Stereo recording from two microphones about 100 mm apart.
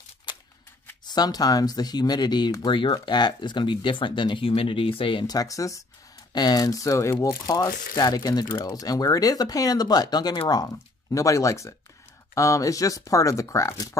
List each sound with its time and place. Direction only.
0.3 s a sound: 50° left (ahead or behind)
1.0 s speech: 40° left (ahead or behind)
4.5 s speech: 65° left (ahead or behind)
5.2 s speech: 40° left (ahead or behind)